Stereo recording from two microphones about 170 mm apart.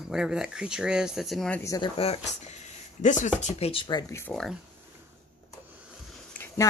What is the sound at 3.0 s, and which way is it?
Speech, 45° left (ahead or behind).